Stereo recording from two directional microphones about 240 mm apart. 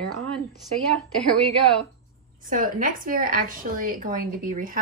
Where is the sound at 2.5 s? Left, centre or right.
Right.